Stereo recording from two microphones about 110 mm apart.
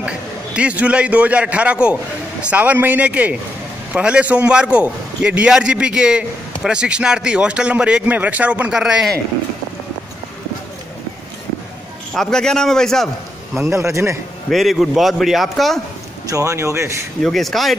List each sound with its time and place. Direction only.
0.6 s speech: 10° right (ahead or behind)
12.1 s a man's voice: 5° left (ahead or behind)
13.7 s speech: 25° right (ahead or behind)
14.5 s a man's voice: centre (ahead or behind)
16.3 s speech: 30° right (ahead or behind)
17.2 s a man's voice: centre (ahead or behind)